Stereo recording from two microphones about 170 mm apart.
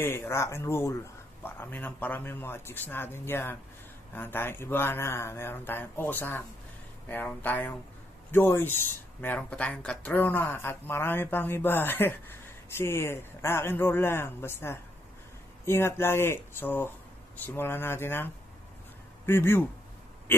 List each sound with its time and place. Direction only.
0.0 s speech: 15° left (ahead or behind)